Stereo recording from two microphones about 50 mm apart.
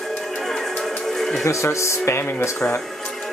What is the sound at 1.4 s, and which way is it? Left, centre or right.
Speech, left.